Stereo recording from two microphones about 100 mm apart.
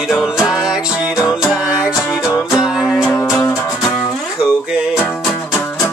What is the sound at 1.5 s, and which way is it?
Music, 10° right (ahead or behind).